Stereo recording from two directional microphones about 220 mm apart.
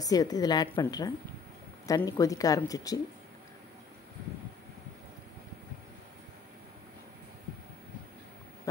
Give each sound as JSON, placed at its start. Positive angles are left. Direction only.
{"t": 0.0, "sound": "a woman's voice", "side_deg": 15}